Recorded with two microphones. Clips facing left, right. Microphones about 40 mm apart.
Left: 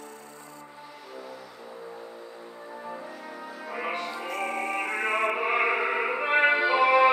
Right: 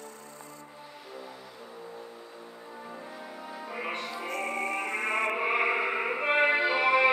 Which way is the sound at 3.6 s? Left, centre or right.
Centre.